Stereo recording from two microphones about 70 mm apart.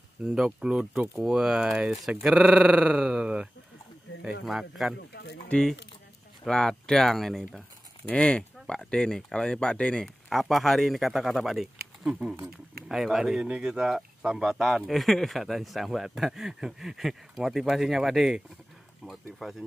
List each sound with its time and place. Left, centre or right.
0.2 s speech: centre
4.5 s a man's voice: centre
5.5 s speech: centre
8.1 s speech: centre
10.0 s a man's voice: centre
19.4 s a man's voice: centre